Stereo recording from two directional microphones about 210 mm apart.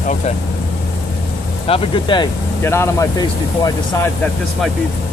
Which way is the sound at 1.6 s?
25° left (ahead or behind).